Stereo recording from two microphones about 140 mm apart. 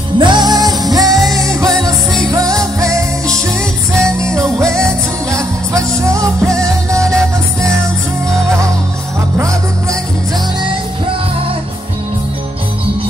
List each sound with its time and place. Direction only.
0.2 s music: 30° right (ahead or behind)
1.7 s music: 5° left (ahead or behind)
2.3 s music: 25° right (ahead or behind)
4.2 s music: 20° right (ahead or behind)
9.4 s music: 25° right (ahead or behind)